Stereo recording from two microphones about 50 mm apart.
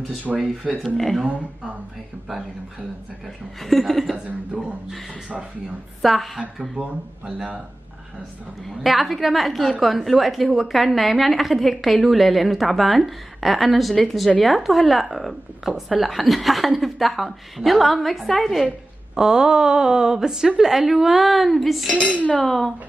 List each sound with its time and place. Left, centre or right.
0.3 s speech: right
0.8 s a woman's voice: centre
1.2 s speech: right
3.6 s a woman's voice: centre
4.5 s speech: centre
6.0 s a woman's voice: centre
6.8 s speech: right
8.6 s a woman's voice: centre
19.1 s a woman's voice: centre